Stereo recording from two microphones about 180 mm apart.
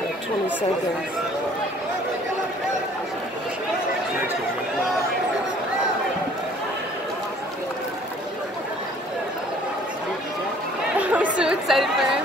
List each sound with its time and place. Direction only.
11.0 s speech: 5° right (ahead or behind)